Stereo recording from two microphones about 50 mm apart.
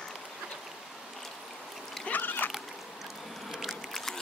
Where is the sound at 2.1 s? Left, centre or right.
Left.